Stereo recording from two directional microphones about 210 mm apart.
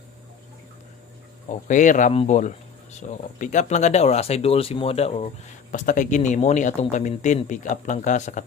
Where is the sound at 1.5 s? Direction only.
35° left (ahead or behind).